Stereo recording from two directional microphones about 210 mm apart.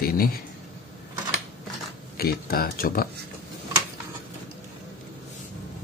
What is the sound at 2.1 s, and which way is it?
Speech, 45° left (ahead or behind).